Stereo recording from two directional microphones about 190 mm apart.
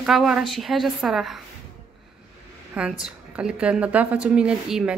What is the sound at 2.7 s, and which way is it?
A woman's voice, 5° right (ahead or behind).